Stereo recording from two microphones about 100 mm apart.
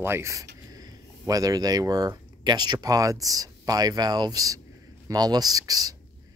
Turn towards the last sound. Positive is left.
turn(degrees=-40)  # may be behind; listen again after turning